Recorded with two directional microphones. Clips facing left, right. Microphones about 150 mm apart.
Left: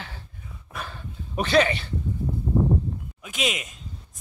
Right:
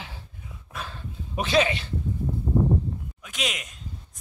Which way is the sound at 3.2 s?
5° left (ahead or behind).